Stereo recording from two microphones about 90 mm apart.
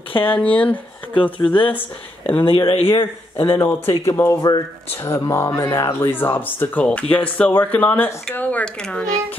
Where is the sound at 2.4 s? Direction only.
90° left.